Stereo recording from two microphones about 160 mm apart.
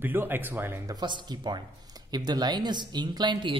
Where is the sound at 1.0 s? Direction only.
25° right (ahead or behind).